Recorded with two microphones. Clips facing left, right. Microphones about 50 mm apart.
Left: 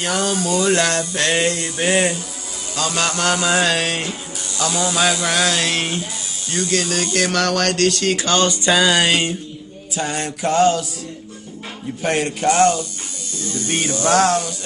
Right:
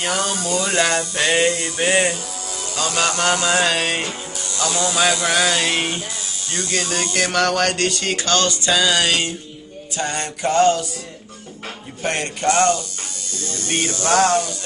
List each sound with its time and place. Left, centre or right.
0.0 s music: centre
8.3 s music: centre
9.9 s music: centre
12.0 s music: centre